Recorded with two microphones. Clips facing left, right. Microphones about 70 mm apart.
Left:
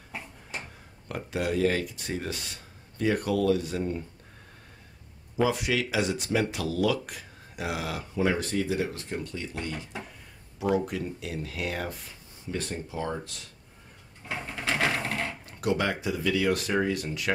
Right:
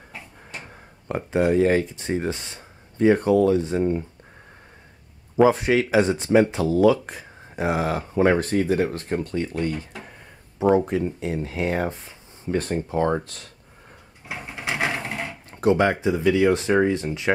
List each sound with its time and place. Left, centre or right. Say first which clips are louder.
1.0 s speech: right 9 dB; right
5.4 s speech: right 9 dB; right
12.4 s speech: right 9 dB; right
14.2 s sewing machine: right 1 dB; centre
15.5 s speech: right 9 dB; right